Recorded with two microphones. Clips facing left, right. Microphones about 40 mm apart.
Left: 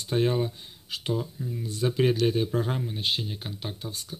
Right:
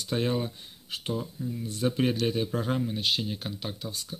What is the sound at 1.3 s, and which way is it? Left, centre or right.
Speech, centre.